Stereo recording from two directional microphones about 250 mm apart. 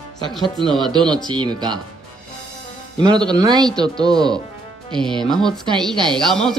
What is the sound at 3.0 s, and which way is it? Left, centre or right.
Speech, centre.